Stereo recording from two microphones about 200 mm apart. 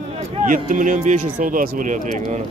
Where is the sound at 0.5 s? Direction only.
40° right (ahead or behind).